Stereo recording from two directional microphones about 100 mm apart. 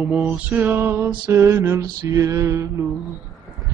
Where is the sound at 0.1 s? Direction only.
15° right (ahead or behind).